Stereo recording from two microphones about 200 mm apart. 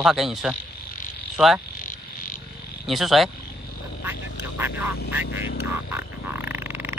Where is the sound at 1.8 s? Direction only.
40° left (ahead or behind).